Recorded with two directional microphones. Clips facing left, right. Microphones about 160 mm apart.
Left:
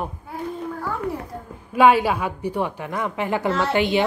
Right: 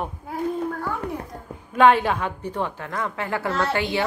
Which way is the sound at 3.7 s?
20° left (ahead or behind).